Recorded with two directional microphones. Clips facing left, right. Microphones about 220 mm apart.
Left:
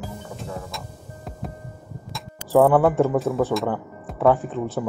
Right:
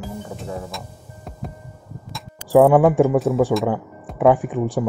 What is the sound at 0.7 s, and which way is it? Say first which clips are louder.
Music: right 1 dB; centre (ahead or behind).